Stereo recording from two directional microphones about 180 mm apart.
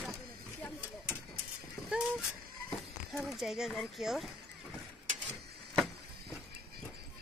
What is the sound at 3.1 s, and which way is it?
Speech, centre (ahead or behind).